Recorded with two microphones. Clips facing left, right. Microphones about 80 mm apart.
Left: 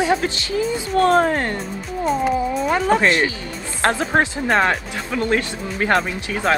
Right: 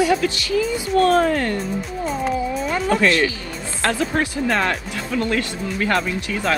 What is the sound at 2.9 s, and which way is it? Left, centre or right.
Speech, left.